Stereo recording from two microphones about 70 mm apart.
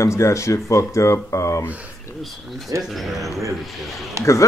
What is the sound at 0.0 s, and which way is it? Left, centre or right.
Speech, left.